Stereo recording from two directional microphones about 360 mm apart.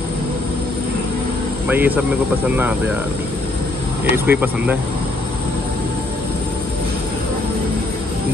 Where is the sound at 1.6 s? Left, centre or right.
Centre.